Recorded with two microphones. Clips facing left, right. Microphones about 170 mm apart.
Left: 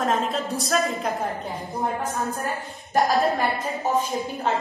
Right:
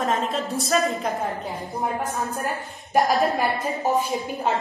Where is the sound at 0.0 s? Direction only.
Centre (ahead or behind).